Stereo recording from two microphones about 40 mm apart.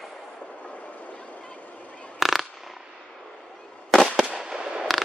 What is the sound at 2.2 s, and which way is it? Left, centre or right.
Fireworks, centre.